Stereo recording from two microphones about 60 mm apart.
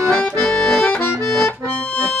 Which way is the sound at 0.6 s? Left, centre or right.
Centre.